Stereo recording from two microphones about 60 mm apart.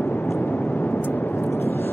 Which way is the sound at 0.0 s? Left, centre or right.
Left.